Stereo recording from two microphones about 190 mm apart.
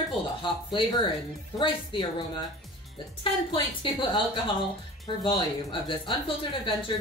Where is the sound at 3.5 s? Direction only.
25° left (ahead or behind).